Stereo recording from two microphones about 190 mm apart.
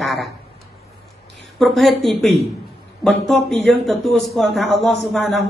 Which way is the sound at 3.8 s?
Centre (ahead or behind).